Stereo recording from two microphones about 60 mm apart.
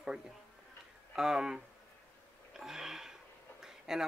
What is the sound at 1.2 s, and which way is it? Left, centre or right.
Speech, centre.